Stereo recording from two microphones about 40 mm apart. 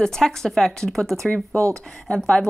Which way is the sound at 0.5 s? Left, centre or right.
Centre.